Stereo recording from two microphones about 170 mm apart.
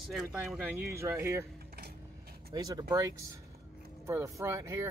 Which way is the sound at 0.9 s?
15° right (ahead or behind).